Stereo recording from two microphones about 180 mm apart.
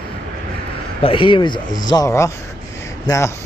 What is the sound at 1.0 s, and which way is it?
Speech, 30° left (ahead or behind).